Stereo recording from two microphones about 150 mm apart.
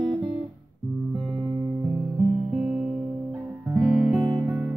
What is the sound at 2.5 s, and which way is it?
Music, 5° right (ahead or behind).